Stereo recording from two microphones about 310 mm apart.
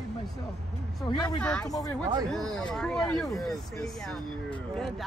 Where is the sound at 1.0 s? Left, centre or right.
Centre.